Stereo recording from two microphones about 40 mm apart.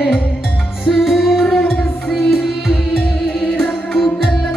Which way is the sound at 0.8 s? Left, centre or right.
Centre.